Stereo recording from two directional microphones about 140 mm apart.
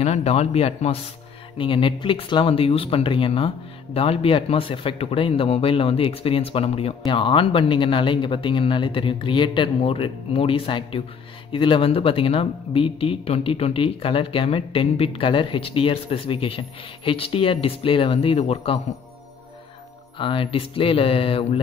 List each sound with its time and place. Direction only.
0.0 s a man's voice: 50° left (ahead or behind)
20.2 s speech: 40° left (ahead or behind)